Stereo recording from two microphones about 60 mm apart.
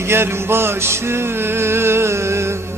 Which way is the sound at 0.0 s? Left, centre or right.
Right.